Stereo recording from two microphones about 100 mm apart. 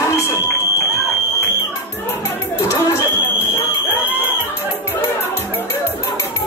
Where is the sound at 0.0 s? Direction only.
30° left (ahead or behind).